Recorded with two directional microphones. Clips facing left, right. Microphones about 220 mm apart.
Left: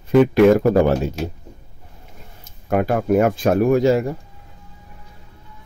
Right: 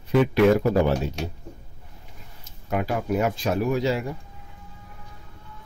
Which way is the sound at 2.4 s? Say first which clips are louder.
Left 7 dB; 55° left (ahead or behind).